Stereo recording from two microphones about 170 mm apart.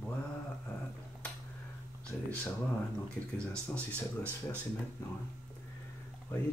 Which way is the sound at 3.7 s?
15° right (ahead or behind).